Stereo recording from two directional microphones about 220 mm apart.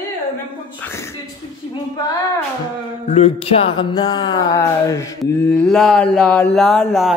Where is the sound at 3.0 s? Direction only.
25° left (ahead or behind).